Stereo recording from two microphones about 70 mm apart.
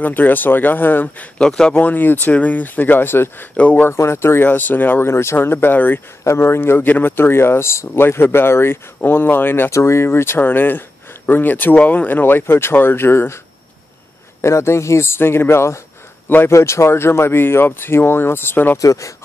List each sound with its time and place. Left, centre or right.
0.0 s speech: left
1.4 s speech: centre
1.8 s speech: left
3.9 s speech: left
9.7 s speech: left
14.4 s a man's voice: left
16.5 s speech: left
18.8 s speech: left